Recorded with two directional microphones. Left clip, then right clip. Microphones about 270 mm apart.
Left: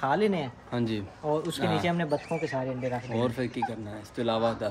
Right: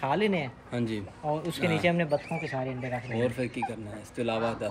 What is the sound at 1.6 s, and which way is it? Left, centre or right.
Speech, left.